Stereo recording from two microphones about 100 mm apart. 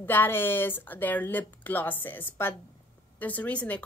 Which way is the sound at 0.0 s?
20° left (ahead or behind).